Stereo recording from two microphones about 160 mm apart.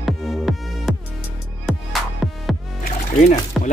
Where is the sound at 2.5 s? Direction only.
Centre (ahead or behind).